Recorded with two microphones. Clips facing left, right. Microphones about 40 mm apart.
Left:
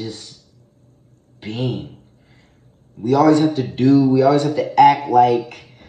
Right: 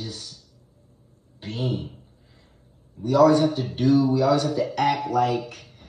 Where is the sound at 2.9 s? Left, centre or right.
Left.